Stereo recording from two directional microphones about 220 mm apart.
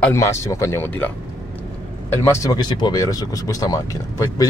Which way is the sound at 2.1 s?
10° left (ahead or behind).